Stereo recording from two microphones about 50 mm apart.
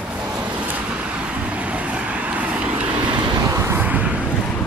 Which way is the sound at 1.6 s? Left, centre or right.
Right.